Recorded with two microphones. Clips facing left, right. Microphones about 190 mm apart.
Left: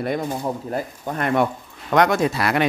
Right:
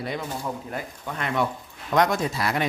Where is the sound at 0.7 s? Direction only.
40° left (ahead or behind); by 2.6 s 70° left (ahead or behind).